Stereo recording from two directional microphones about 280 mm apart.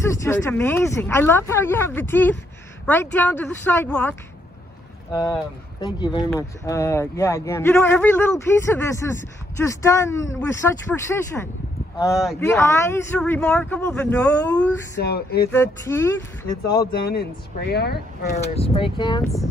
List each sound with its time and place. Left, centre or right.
0.0 s a man's voice: centre
12.4 s a man's voice: centre
15.0 s speech: left
15.5 s a man's voice: centre
17.1 s speech: left
18.5 s a man's voice: left